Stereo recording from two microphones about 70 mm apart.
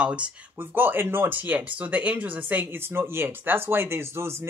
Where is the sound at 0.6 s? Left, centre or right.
Right.